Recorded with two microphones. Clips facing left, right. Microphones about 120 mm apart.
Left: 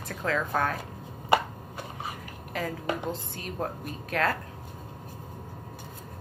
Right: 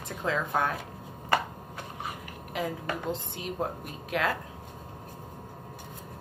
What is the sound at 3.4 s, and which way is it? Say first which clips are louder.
Speech: right 1 dB; 15° right (ahead or behind).